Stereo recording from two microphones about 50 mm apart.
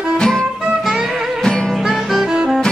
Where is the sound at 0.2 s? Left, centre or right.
Centre.